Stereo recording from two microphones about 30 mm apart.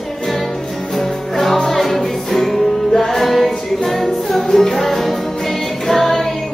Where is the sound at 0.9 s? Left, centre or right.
Centre.